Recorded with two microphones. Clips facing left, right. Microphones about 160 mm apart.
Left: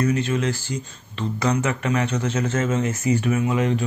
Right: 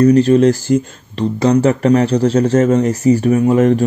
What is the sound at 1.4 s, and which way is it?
Speech, 35° right (ahead or behind).